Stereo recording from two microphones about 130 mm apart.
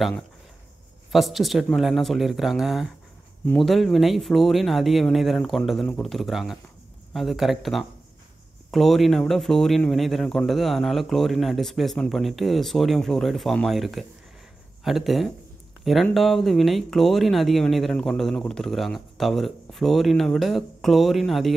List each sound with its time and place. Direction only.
1.1 s a man's voice: centre (ahead or behind)
6.1 s a man's voice: 5° right (ahead or behind)